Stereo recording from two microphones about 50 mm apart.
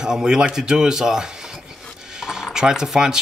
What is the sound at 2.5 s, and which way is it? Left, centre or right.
Speech, centre.